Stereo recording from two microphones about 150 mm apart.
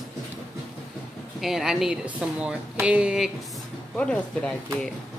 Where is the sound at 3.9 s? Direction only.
5° left (ahead or behind).